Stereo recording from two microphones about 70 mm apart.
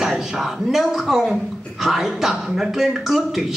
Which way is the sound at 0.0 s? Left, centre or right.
Centre.